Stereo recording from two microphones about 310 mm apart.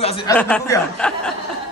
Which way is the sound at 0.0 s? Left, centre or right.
Centre.